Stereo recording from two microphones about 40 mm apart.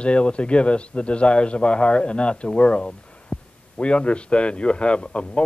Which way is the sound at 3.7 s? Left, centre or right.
Left.